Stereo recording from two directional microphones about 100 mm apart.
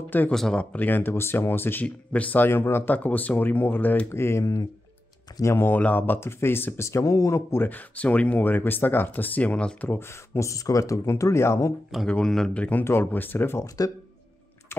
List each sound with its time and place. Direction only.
0.3 s speech: 5° left (ahead or behind); by 11.7 s 30° left (ahead or behind)
12.1 s speech: 5° left (ahead or behind); by 13.7 s 20° left (ahead or behind)
14.7 s typing: 25° left (ahead or behind)